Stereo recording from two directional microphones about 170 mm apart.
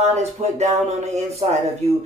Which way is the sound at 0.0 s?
40° right (ahead or behind).